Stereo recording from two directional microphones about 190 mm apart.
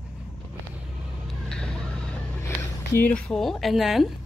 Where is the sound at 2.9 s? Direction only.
10° left (ahead or behind).